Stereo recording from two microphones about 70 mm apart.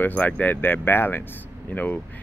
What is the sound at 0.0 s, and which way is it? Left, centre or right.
Speech, left.